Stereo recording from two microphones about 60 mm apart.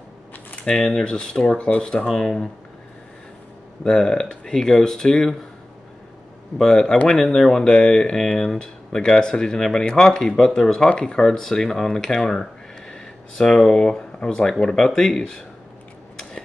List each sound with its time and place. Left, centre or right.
0.7 s speech: centre
3.8 s speech: centre
6.6 s speech: centre